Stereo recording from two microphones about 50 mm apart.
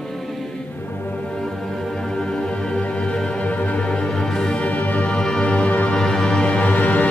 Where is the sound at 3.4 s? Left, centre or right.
Left.